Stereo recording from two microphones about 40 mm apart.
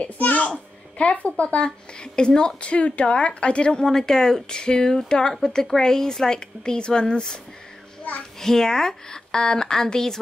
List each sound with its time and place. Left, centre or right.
0.0 s a woman's voice: left
2.0 s speech: left
3.8 s a woman's voice: centre
8.4 s a woman's voice: centre